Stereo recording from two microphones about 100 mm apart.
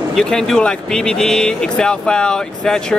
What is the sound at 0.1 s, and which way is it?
Speech, 5° left (ahead or behind).